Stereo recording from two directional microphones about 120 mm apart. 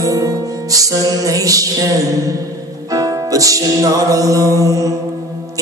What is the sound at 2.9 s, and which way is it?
Music, 30° right (ahead or behind).